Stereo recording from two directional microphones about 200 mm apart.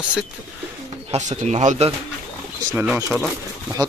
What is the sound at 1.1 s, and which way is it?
Speech, 35° right (ahead or behind).